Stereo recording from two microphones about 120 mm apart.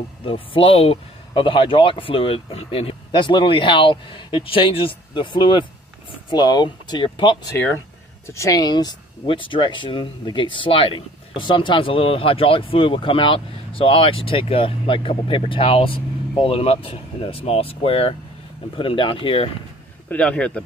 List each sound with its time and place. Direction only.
0.2 s speech: 50° left (ahead or behind)
7.5 s speech: 15° left (ahead or behind); by 19.5 s 45° left (ahead or behind)
20.1 s speech: 10° left (ahead or behind)